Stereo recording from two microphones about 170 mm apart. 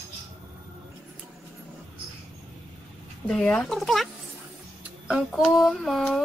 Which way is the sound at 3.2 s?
5° left (ahead or behind).